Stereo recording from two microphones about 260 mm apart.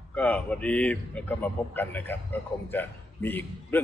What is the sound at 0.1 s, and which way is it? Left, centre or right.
A man's voice, centre.